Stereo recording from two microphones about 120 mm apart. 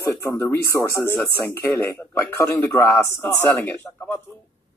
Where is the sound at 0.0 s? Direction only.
25° left (ahead or behind).